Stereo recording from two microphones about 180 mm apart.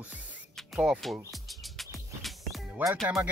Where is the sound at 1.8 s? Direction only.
Centre (ahead or behind).